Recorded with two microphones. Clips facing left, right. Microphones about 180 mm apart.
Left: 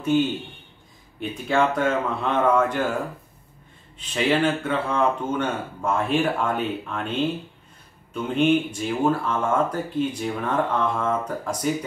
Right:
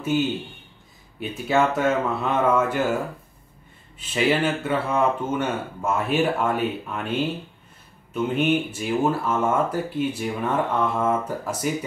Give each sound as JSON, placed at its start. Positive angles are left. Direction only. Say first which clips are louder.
{"t": 0.0, "sound": "speech", "louder": "left 2 dB", "side_deg": -10}
{"t": 4.0, "sound": "speech", "louder": "even", "side_deg": -5}